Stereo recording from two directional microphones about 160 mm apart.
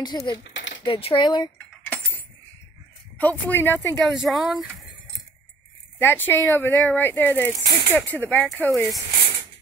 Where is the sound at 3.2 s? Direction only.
10° left (ahead or behind).